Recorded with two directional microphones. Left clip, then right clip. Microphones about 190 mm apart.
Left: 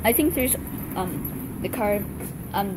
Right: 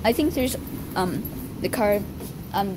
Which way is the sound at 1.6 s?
25° right (ahead or behind).